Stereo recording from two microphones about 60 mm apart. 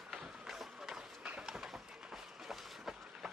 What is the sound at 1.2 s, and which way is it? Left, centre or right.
Run, centre.